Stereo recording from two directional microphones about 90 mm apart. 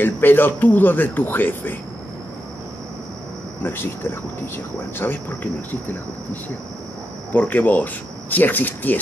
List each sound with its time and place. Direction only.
0.0 s speech: 20° left (ahead or behind)
3.6 s speech: 25° left (ahead or behind)
7.3 s speech: 20° left (ahead or behind)